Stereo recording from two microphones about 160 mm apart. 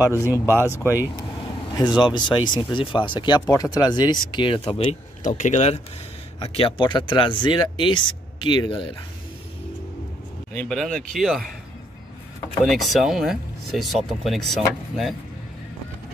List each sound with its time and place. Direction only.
0.0 s speech: 15° right (ahead or behind)
0.7 s speech: 15° left (ahead or behind)
1.8 s speech: 30° left (ahead or behind)
10.5 s speech: 5° left (ahead or behind)
12.6 s speech: centre (ahead or behind)